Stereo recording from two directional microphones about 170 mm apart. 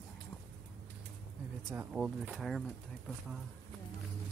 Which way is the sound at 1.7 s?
10° right (ahead or behind).